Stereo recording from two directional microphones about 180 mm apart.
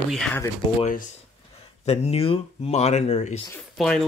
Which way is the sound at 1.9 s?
35° left (ahead or behind).